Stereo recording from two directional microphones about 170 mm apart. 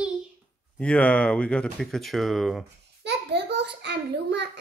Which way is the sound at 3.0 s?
85° right.